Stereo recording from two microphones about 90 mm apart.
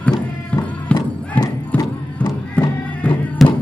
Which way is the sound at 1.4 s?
15° left (ahead or behind).